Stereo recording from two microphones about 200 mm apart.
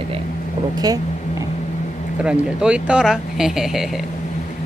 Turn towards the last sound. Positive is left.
turn(degrees=0)  # may be behind; listen again after turning